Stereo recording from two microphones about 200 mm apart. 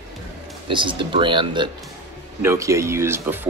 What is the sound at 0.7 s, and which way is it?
Speech, 25° right (ahead or behind).